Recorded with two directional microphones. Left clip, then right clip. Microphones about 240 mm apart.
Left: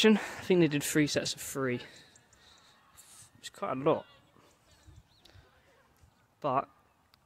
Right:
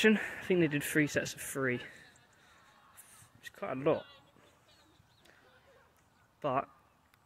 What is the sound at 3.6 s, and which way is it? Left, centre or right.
Speech, centre.